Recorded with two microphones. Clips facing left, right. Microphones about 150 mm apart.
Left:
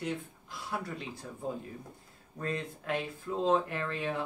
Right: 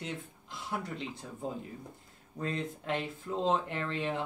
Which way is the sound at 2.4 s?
25° right (ahead or behind).